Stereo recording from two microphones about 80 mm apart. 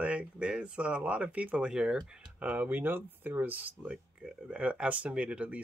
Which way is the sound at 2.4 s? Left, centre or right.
Right.